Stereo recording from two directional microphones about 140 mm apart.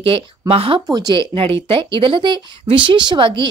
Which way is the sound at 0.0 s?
40° right (ahead or behind).